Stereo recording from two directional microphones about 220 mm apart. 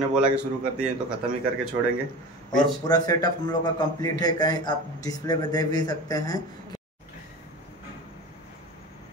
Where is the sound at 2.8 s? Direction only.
15° left (ahead or behind).